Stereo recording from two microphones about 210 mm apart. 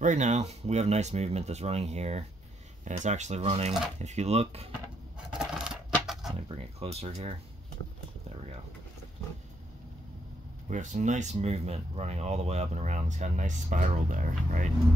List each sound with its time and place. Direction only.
0.0 s speech: 35° right (ahead or behind)
5.3 s coin: 5° right (ahead or behind)
6.5 s speech: 30° right (ahead or behind)
10.7 s speech: 35° right (ahead or behind)